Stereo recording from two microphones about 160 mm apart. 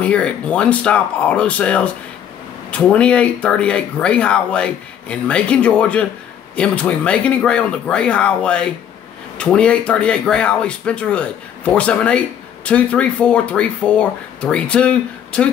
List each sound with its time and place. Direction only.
0.0 s speech: 5° left (ahead or behind)